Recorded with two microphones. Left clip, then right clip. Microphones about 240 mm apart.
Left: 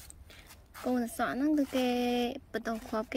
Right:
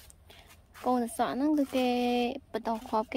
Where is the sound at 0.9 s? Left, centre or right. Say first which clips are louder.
Right 1 dB; centre.